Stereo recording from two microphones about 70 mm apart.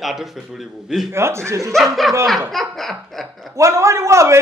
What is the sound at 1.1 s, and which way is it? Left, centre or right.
Speech, right.